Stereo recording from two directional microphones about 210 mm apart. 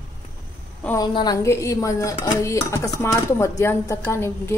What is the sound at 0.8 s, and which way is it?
A woman's voice, 10° left (ahead or behind).